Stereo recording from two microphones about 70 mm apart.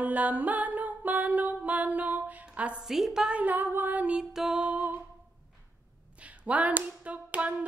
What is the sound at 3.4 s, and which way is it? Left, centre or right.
Clapping, right.